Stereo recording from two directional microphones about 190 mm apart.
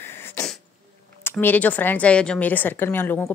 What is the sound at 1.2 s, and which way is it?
Speech, 10° left (ahead or behind).